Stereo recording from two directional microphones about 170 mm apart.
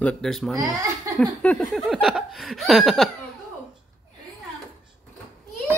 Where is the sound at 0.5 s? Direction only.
20° right (ahead or behind).